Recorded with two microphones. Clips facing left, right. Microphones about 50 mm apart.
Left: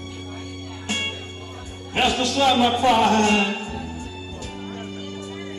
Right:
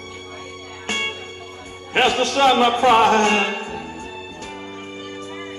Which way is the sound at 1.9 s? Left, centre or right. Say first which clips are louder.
Right 3 dB; right.